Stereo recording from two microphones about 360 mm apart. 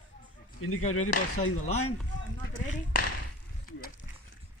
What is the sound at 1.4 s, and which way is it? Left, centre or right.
Speech, left.